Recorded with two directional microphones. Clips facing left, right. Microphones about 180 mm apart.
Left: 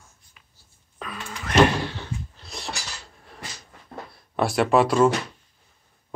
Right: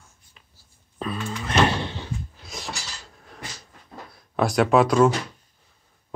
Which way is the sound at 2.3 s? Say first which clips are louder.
Even; 5° right (ahead or behind).